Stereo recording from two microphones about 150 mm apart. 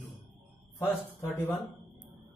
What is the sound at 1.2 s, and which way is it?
Speech, 15° left (ahead or behind).